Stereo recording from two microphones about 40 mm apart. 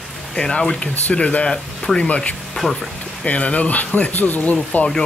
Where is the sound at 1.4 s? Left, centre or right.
Centre.